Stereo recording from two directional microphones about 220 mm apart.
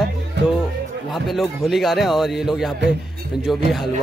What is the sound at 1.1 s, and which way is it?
Speech, centre (ahead or behind).